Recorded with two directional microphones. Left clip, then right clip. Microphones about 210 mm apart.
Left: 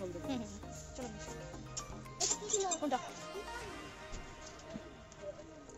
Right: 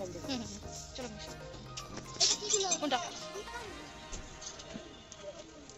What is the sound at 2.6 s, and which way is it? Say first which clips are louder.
Music: right 3 dB; 10° left (ahead or behind).